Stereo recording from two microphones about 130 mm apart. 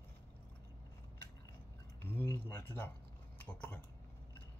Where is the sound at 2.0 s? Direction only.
15° left (ahead or behind).